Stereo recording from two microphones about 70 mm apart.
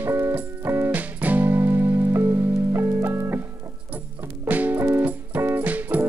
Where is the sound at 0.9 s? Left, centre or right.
Right.